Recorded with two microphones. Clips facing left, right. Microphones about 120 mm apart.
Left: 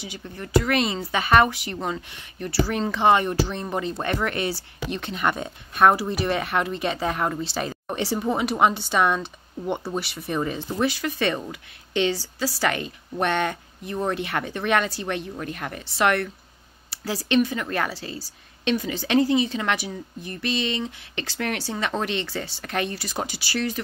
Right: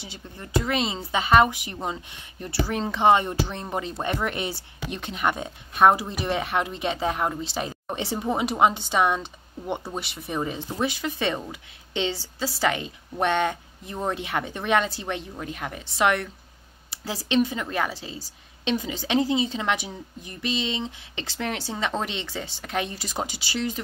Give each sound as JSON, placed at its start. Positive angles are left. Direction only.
{"t": 0.6, "sound": "a woman's voice", "side_deg": -20}
{"t": 16.9, "sound": "a sound", "side_deg": -20}
{"t": 17.3, "sound": "a woman's voice", "side_deg": -20}